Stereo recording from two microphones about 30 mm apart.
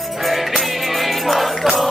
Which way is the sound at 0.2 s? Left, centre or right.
Centre.